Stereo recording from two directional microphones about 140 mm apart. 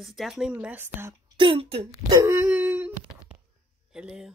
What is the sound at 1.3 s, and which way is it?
Speech, 40° right (ahead or behind).